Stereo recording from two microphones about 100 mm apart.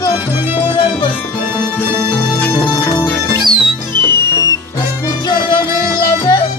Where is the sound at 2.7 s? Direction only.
30° left (ahead or behind).